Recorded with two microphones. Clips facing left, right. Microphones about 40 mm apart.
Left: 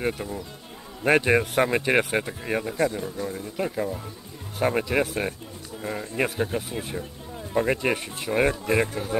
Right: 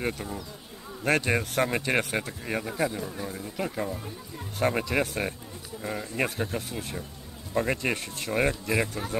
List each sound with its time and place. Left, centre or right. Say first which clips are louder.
0.0 s speech: left 3 dB; centre
1.0 s speech: left 5 dB; centre
2.7 s speech: left 4 dB; centre
8.5 s speech: left 4 dB; left
9.1 s speech: left 4 dB; centre